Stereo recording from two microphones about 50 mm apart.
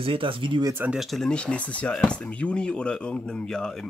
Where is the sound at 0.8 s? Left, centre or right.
Right.